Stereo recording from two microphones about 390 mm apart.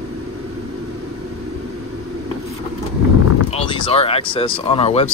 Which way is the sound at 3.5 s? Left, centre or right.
Centre.